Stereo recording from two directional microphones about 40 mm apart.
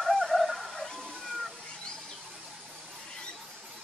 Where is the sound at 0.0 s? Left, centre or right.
Centre.